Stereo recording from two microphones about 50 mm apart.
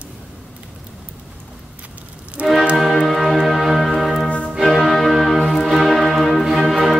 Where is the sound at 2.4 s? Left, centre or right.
Right.